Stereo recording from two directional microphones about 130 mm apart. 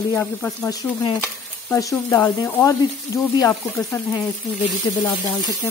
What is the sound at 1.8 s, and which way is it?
Speech, 25° left (ahead or behind).